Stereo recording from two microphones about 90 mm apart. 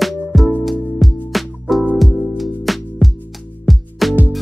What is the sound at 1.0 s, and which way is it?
Music, centre (ahead or behind).